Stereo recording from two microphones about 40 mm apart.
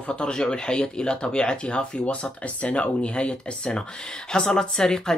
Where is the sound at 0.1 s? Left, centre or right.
Left.